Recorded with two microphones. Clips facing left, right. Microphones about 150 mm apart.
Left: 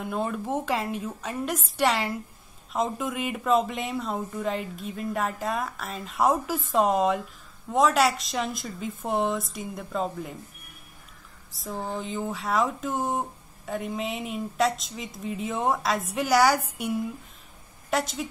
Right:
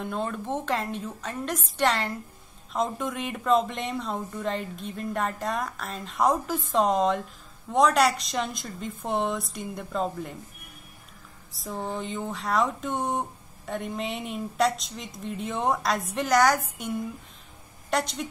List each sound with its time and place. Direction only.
0.0 s a woman's voice: 5° left (ahead or behind)
11.5 s a woman's voice: centre (ahead or behind)